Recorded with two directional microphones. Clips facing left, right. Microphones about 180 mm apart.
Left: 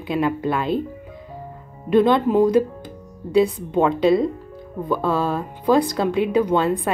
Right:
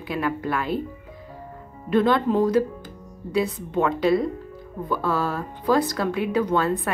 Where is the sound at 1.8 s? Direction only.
20° left (ahead or behind).